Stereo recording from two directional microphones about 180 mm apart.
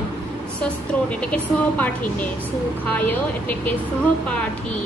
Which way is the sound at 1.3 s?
10° left (ahead or behind).